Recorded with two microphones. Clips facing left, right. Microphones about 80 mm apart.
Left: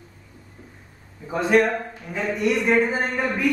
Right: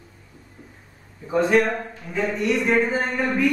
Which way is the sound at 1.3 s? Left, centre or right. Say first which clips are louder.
Even; centre.